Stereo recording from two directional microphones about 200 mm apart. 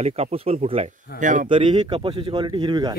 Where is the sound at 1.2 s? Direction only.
40° right (ahead or behind).